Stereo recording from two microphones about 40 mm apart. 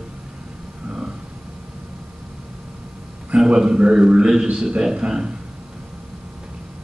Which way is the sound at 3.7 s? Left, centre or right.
Right.